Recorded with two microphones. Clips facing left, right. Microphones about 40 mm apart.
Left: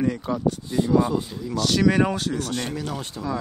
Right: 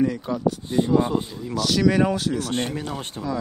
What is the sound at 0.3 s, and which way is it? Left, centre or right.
Speech, centre.